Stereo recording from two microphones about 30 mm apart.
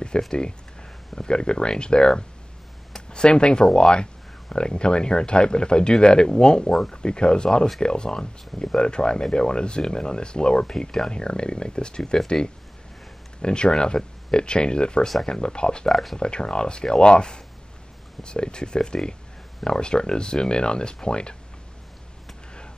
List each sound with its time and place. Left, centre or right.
0.3 s speech: left
13.4 s speech: left
15.9 s speech: centre
16.2 s speech: left